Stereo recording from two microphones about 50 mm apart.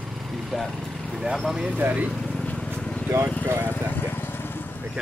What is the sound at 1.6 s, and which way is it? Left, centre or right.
Speech, right.